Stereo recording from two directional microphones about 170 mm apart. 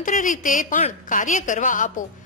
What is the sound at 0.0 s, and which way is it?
A woman's voice, 50° left (ahead or behind).